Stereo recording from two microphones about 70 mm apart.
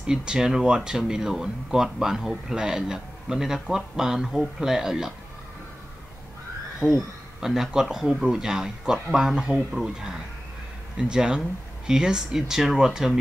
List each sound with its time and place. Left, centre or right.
0.0 s speech: centre
6.8 s speech: centre